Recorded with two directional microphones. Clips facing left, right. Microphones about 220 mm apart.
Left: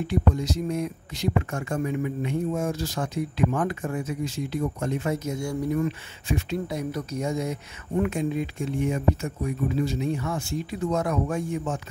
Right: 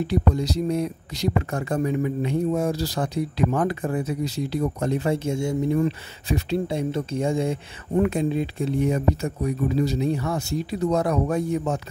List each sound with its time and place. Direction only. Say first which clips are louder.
0.0 s speech: right 2 dB; 35° right (ahead or behind)